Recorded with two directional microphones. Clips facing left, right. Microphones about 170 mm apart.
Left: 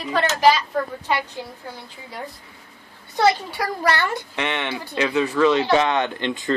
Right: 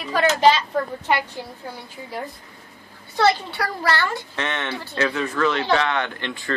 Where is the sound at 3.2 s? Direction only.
10° left (ahead or behind).